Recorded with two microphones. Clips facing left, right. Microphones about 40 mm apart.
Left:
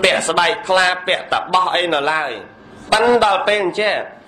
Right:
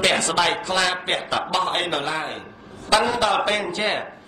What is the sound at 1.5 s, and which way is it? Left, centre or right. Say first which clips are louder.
A man's voice: left 8 dB; left.